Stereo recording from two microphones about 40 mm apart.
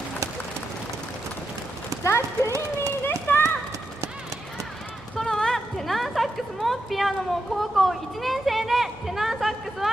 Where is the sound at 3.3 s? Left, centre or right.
Left.